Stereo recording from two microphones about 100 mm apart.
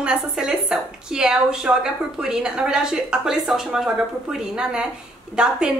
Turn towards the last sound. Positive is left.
turn(degrees=-5)  # may be behind; listen again after turning